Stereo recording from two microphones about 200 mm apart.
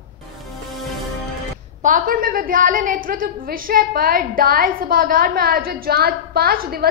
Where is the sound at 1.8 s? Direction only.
40° right (ahead or behind).